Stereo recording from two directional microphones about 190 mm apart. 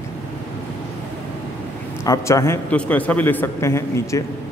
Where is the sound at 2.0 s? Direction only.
15° left (ahead or behind).